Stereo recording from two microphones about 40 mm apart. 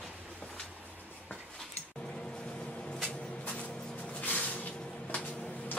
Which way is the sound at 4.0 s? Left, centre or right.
Left.